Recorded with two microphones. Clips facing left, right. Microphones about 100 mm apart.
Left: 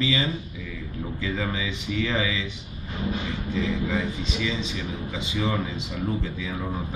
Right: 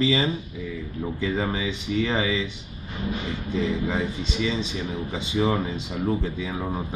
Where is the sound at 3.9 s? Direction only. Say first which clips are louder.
Even; 30° right (ahead or behind).